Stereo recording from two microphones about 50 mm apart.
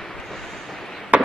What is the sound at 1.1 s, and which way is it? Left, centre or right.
Fireworks, right.